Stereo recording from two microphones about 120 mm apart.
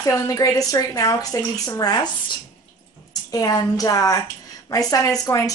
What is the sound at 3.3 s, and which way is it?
A woman's voice, 30° left (ahead or behind).